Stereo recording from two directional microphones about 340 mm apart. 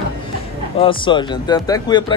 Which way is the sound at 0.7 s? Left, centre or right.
Centre.